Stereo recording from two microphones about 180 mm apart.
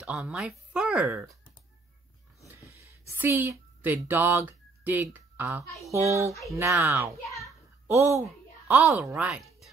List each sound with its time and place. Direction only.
0.0 s speech: 5° right (ahead or behind)
3.1 s speech: 10° right (ahead or behind)
7.3 s a sound: 15° right (ahead or behind)
8.6 s speech: 10° right (ahead or behind)